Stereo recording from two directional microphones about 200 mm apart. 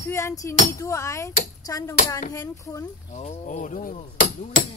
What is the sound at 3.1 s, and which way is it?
Speech, 35° left (ahead or behind).